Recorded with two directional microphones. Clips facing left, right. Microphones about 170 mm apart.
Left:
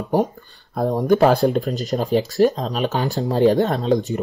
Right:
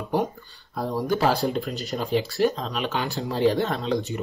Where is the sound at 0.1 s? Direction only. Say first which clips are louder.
Left 5 dB; 45° left (ahead or behind).